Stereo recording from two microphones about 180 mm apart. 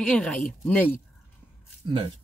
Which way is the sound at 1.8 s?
25° right (ahead or behind).